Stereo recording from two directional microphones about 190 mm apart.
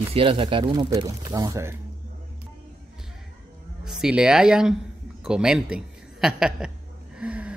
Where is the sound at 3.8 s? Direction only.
5° right (ahead or behind).